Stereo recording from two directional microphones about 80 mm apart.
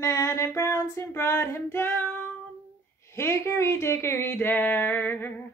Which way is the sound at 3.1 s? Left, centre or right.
Left.